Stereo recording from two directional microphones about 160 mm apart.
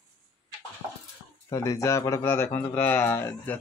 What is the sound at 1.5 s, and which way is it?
Speech, 20° left (ahead or behind).